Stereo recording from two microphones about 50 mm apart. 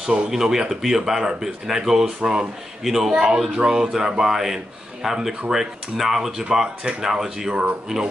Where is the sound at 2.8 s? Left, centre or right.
Centre.